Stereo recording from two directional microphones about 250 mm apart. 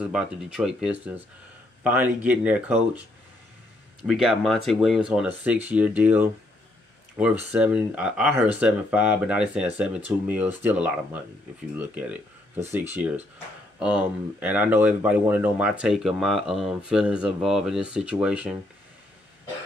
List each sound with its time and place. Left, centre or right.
0.0 s speech: centre
4.1 s speech: centre
7.5 s speech: centre